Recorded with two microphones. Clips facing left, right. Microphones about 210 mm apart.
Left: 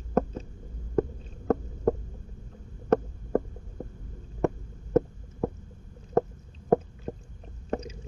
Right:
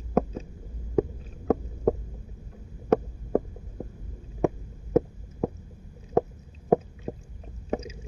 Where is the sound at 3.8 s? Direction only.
5° right (ahead or behind).